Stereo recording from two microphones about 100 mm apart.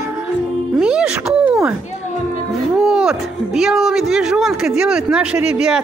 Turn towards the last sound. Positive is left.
turn(degrees=-5)  # may be behind; listen again after turning